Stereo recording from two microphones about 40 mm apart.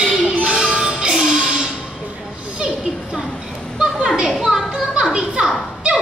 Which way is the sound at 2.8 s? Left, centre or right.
Centre.